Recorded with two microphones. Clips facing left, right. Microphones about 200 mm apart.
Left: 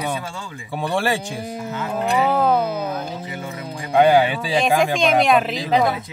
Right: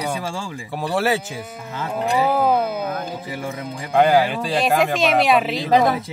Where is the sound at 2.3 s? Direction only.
10° right (ahead or behind).